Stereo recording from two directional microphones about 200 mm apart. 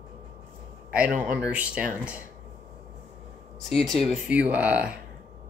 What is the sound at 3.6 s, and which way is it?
Speech, centre (ahead or behind).